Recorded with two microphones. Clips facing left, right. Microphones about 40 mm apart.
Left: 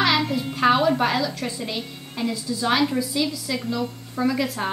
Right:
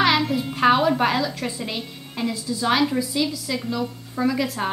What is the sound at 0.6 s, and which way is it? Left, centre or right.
A woman's voice, centre.